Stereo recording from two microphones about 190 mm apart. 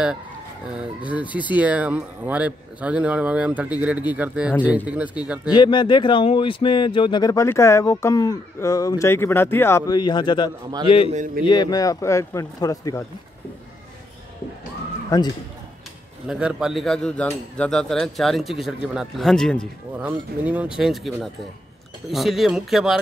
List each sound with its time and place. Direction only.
0.7 s speech: 5° right (ahead or behind)
5.5 s speech: 25° left (ahead or behind)
15.0 s a man's voice: 20° left (ahead or behind)
16.3 s speech: 5° right (ahead or behind)
20.0 s speech: 10° right (ahead or behind)